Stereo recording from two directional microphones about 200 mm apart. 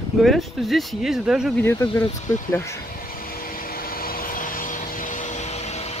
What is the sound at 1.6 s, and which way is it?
Speech, 15° left (ahead or behind).